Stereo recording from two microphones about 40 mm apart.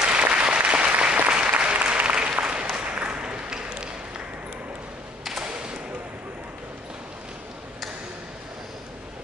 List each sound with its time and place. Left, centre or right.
0.0 s applause: right